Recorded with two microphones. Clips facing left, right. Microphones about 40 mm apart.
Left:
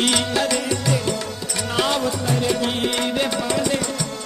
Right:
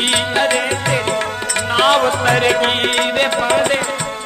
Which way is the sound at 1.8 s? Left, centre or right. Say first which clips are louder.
Right 8 dB; right.